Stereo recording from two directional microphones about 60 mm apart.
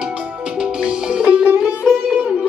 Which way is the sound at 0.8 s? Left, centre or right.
Centre.